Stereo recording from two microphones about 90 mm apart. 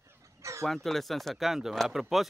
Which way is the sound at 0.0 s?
35° right (ahead or behind).